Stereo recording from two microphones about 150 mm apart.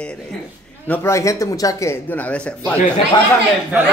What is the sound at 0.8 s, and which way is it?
Speech, 15° left (ahead or behind).